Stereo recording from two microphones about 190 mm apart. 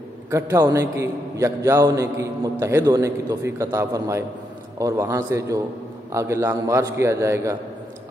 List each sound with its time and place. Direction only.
0.3 s a man's voice: 15° right (ahead or behind)